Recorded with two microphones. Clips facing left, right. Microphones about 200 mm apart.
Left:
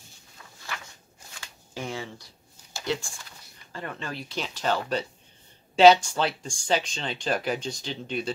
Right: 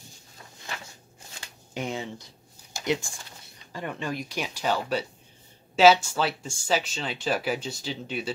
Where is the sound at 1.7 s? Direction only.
20° right (ahead or behind).